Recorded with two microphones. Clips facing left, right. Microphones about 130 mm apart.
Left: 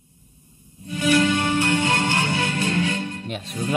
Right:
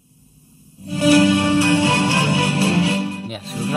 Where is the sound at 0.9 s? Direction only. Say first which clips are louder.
Right 6 dB; 35° right (ahead or behind).